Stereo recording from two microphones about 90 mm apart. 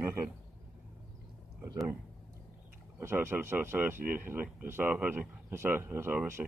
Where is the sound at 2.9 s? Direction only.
30° right (ahead or behind).